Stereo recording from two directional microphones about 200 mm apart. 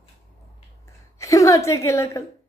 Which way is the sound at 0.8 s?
15° left (ahead or behind).